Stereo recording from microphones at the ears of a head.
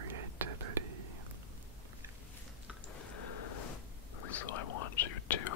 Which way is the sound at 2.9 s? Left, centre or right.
Left.